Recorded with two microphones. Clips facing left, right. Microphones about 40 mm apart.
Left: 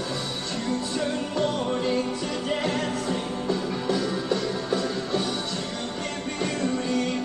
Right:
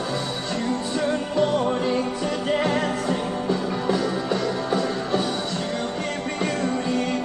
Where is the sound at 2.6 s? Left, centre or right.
Right.